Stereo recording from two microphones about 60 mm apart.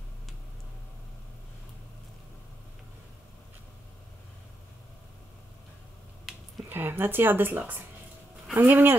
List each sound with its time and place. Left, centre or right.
6.7 s speech: right